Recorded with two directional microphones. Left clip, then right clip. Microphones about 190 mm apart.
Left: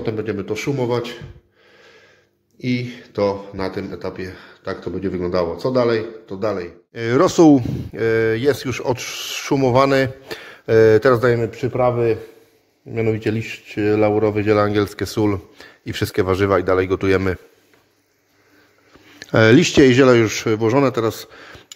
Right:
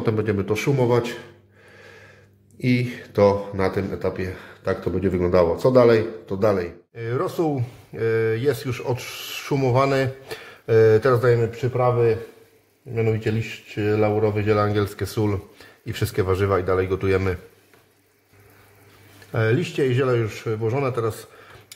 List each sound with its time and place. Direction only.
0.0 s speech: 5° left (ahead or behind)
2.6 s speech: centre (ahead or behind)
6.9 s speech: 40° left (ahead or behind)
19.3 s speech: 45° left (ahead or behind)